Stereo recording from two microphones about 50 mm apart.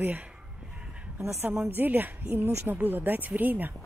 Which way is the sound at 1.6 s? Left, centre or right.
Right.